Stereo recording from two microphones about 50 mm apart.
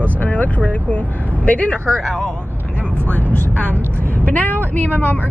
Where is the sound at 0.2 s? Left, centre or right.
Left.